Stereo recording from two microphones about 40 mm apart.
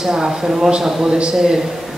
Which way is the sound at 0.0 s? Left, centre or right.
Centre.